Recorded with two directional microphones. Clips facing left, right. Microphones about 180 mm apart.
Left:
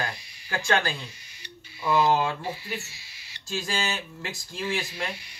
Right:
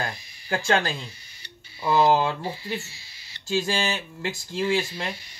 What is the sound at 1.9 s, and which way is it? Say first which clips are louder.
Speech: right 3 dB; 30° right (ahead or behind).